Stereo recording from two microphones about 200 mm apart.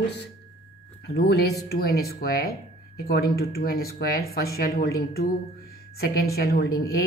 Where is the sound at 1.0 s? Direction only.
55° left (ahead or behind).